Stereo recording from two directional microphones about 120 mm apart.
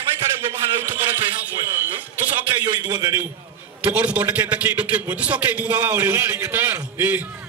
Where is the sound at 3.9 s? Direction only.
10° right (ahead or behind).